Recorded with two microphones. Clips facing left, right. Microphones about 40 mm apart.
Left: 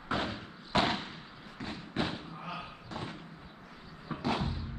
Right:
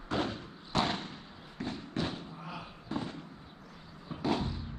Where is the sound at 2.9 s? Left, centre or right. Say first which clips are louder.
Right 5 dB; centre.